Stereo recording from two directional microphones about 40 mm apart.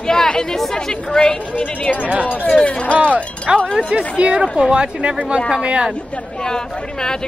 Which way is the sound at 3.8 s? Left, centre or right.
Right.